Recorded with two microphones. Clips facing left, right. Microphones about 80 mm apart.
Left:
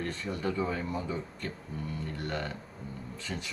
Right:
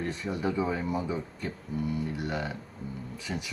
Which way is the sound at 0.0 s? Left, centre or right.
Centre.